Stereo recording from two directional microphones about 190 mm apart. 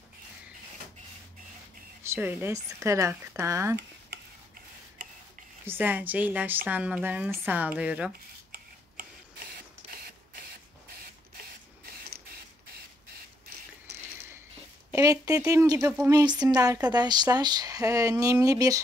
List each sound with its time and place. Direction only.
2.0 s a woman's voice: 10° right (ahead or behind)
5.7 s a woman's voice: 10° right (ahead or behind)
14.9 s speech: 15° right (ahead or behind)